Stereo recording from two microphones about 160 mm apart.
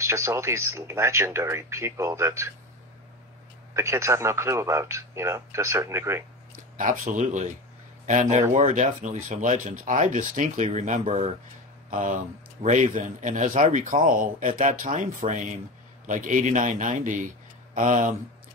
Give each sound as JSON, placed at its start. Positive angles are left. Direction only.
{"t": 0.0, "sound": "speech", "side_deg": -15}
{"t": 3.7, "sound": "speech", "side_deg": -15}
{"t": 6.5, "sound": "speech", "side_deg": -55}